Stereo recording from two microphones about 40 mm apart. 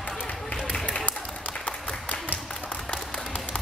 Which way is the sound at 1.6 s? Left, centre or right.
Left.